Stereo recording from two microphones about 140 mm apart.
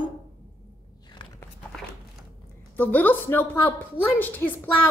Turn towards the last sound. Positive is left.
turn(degrees=15)  # may be behind; listen again after turning